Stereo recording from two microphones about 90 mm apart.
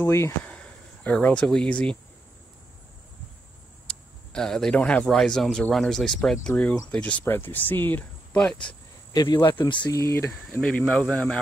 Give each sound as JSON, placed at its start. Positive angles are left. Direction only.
{"t": 0.0, "sound": "speech", "side_deg": 30}
{"t": 0.5, "sound": "a sound", "side_deg": 15}
{"t": 3.8, "sound": "a man's voice", "side_deg": 10}
{"t": 8.4, "sound": "a man's voice", "side_deg": 10}
{"t": 9.1, "sound": "speech", "side_deg": 50}
{"t": 9.9, "sound": "speech", "side_deg": 30}
{"t": 10.9, "sound": "a man's voice", "side_deg": 15}